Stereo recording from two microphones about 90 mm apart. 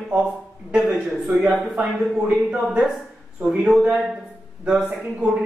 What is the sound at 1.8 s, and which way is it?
Speech, 15° right (ahead or behind).